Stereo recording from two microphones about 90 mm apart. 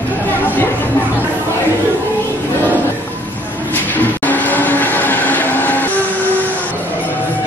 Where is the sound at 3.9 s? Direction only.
20° left (ahead or behind).